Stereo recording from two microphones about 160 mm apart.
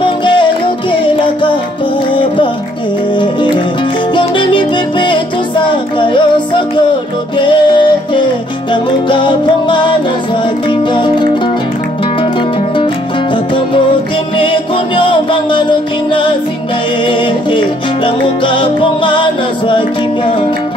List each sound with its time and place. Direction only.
0.0 s music: 30° left (ahead or behind)
14.4 s music: 30° left (ahead or behind)